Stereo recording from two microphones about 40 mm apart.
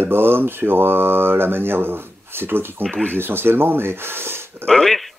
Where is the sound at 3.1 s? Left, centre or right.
Right.